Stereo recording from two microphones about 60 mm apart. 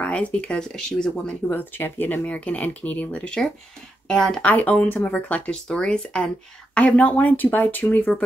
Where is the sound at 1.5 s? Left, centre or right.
Left.